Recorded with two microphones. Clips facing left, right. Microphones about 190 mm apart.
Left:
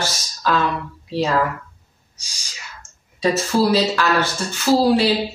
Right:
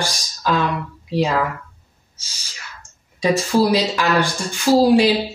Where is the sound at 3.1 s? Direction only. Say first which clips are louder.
Right 1 dB; 15° right (ahead or behind).